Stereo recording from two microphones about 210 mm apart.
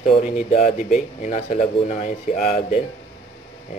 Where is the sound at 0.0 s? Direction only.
35° left (ahead or behind).